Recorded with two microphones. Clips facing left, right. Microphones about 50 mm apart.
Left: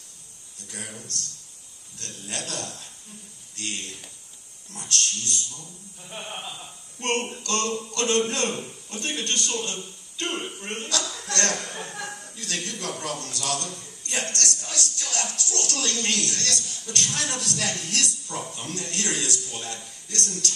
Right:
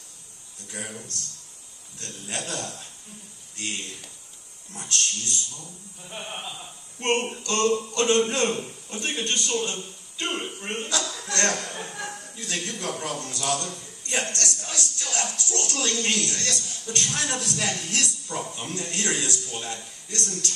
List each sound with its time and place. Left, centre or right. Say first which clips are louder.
0.7 s a man's voice: right 2 dB; centre
4.7 s a man's voice: even; right
6.0 s a man's voice: even; centre
7.0 s a man's voice: right 2 dB; centre